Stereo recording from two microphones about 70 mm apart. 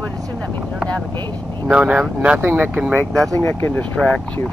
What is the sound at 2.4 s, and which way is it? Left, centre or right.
Speech, right.